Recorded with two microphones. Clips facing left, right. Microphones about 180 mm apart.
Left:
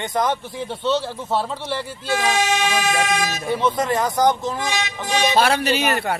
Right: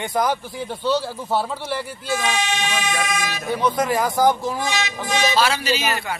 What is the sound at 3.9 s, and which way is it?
Speech, 5° right (ahead or behind).